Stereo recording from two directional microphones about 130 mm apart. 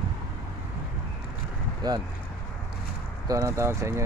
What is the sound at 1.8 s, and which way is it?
Speech, 30° right (ahead or behind).